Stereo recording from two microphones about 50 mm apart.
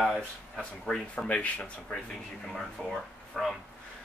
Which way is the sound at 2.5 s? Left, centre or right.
Centre.